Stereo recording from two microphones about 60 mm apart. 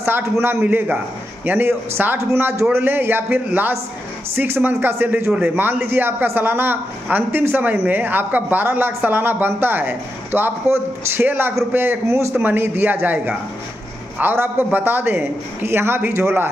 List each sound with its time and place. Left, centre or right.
0.0 s speech: right
0.7 s speech: right
4.4 s speech: right
4.7 s speech: right
12.4 s speech: right